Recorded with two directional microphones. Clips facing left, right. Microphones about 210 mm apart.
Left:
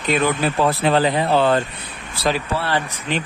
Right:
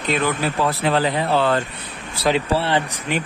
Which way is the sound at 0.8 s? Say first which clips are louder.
Left 2 dB; 20° left (ahead or behind).